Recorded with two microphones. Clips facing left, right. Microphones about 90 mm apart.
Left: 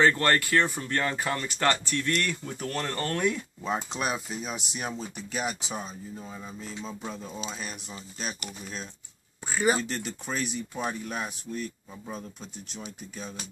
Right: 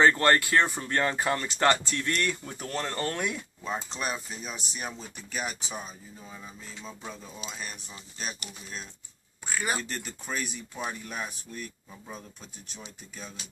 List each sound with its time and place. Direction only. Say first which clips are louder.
0.0 s speech: right 1 dB; 25° right (ahead or behind)
3.6 s speech: left 3 dB; 5° left (ahead or behind)
7.3 s speech: left 4 dB; 30° left (ahead or behind)
9.7 s speech: left 8 dB; centre (ahead or behind)